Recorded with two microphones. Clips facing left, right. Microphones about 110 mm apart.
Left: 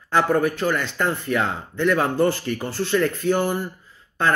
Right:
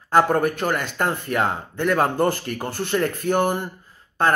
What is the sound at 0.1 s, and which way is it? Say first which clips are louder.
Speech: right 1 dB; 45° right (ahead or behind).